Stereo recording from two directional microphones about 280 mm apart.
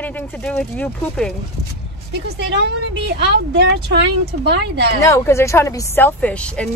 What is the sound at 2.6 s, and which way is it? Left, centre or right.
Speech, right.